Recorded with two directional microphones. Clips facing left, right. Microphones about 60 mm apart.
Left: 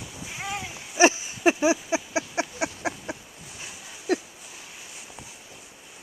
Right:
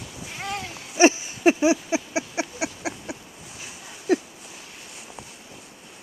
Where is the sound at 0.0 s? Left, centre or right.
Centre.